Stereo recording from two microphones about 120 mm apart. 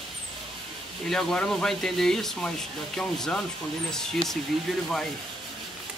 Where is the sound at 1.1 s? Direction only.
5° left (ahead or behind).